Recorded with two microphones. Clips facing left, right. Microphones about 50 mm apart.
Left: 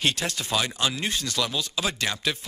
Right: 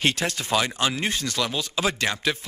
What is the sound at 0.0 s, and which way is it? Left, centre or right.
A man's voice, right.